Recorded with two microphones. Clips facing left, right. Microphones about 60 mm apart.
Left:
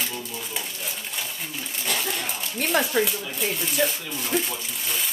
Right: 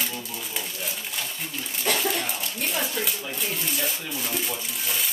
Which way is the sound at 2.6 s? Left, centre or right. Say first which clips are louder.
Left 7 dB; left.